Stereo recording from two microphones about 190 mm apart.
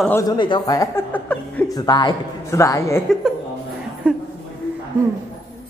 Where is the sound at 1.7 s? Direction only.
20° left (ahead or behind).